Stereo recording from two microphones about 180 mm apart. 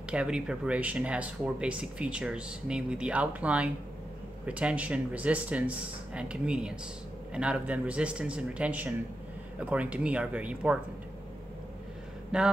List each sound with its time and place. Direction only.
0.1 s speech: 5° right (ahead or behind)
12.3 s speech: 5° right (ahead or behind)